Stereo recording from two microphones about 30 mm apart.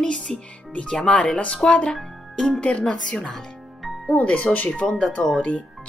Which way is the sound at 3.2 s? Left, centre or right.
Centre.